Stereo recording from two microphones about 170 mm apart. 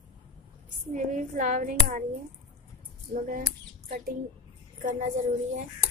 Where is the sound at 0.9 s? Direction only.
50° right (ahead or behind).